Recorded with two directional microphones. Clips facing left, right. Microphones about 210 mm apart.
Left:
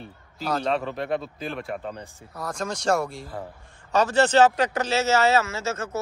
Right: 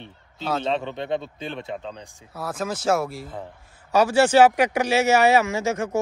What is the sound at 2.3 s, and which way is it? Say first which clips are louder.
Speech: right 2 dB; 5° right (ahead or behind).